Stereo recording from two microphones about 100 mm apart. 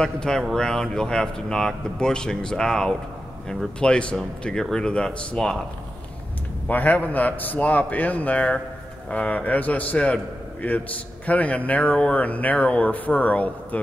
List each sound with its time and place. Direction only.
0.0 s speech: 5° left (ahead or behind)
6.7 s speech: 15° left (ahead or behind)